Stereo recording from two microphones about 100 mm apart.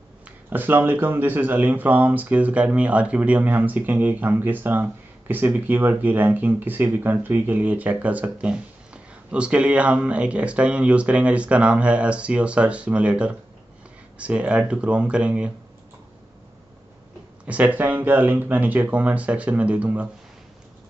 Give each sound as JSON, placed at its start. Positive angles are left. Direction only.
{"t": 0.5, "sound": "speech", "side_deg": -20}
{"t": 17.5, "sound": "speech", "side_deg": -15}